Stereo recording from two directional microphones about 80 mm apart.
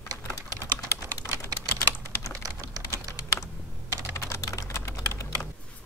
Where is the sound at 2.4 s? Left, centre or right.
Right.